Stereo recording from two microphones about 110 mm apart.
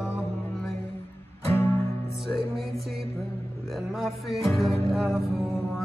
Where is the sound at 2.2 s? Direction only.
Centre (ahead or behind).